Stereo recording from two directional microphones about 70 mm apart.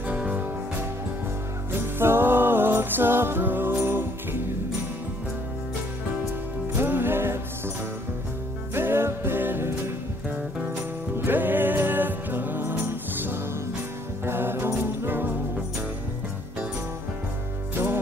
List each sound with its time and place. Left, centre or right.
0.0 s music: centre
1.7 s music: right
6.7 s music: right
8.7 s music: right